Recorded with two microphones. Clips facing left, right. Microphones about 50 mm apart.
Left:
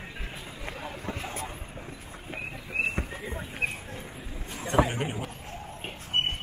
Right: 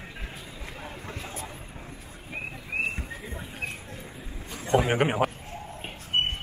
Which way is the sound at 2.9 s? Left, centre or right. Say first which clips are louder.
Left 3 dB; left.